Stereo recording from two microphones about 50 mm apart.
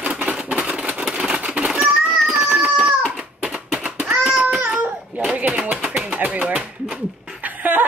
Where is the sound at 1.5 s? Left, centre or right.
Right.